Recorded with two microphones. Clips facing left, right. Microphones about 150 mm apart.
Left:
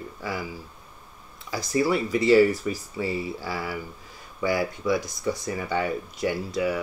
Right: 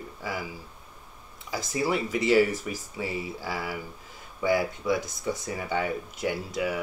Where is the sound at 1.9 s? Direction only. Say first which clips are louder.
Left 3 dB; 20° right (ahead or behind).